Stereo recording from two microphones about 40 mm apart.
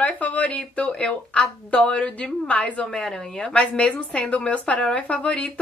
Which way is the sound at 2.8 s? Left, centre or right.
Centre.